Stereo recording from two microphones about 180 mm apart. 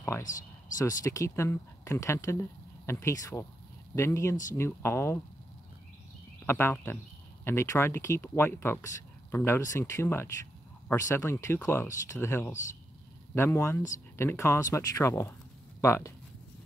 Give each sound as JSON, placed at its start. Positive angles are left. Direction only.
{"t": 0.7, "sound": "speech", "side_deg": 20}
{"t": 6.4, "sound": "speech", "side_deg": 10}